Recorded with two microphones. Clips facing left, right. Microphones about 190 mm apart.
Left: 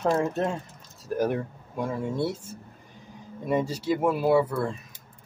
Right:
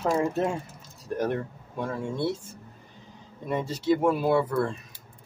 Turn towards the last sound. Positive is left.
turn(degrees=5)  # may be behind; listen again after turning